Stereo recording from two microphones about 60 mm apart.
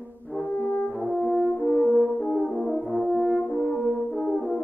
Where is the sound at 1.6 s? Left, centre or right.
Left.